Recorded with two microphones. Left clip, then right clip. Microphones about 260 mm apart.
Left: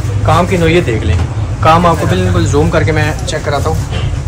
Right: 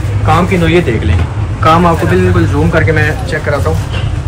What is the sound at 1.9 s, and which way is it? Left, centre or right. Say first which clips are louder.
A man's voice: right 1 dB; centre.